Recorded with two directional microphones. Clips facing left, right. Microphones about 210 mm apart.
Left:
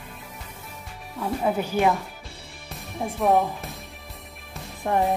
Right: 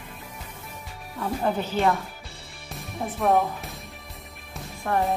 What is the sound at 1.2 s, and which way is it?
Speech, 5° left (ahead or behind).